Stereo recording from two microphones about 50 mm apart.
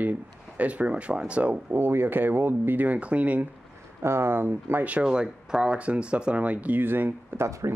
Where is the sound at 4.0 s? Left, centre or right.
Right.